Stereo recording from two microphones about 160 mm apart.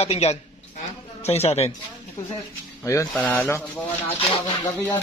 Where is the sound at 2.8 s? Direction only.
20° left (ahead or behind).